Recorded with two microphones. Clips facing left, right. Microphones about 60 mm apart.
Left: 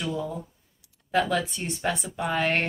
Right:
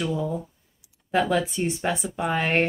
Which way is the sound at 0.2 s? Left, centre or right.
Centre.